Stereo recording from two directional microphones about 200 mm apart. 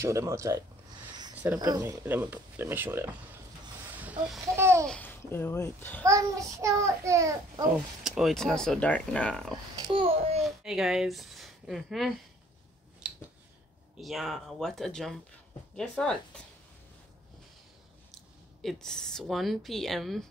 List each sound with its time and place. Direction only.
0.0 s a child's voice: 15° right (ahead or behind)
1.3 s a sound: 10° right (ahead or behind)
1.6 s a child's voice: 15° right (ahead or behind)
4.6 s babbling: 15° right (ahead or behind)
4.8 s a child's voice: 10° left (ahead or behind)
6.0 s a child's voice: 15° right (ahead or behind)
8.0 s speech: centre (ahead or behind)
9.5 s a child's voice: 20° right (ahead or behind)
10.4 s speech: centre (ahead or behind)
13.0 s finger snapping: 5° right (ahead or behind)
14.0 s speech: centre (ahead or behind)
18.6 s speech: centre (ahead or behind)